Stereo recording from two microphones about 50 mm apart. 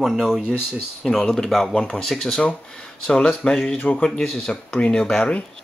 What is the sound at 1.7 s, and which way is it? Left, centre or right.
Speech, centre.